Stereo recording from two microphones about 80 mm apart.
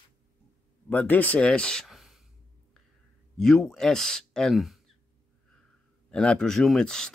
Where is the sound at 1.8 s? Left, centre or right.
Centre.